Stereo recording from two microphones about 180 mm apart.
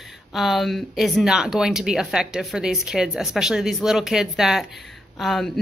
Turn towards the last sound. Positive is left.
turn(degrees=0)  # may be behind; listen again after turning